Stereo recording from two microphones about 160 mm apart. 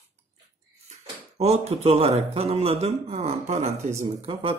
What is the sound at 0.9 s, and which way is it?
A man's voice, 40° right (ahead or behind).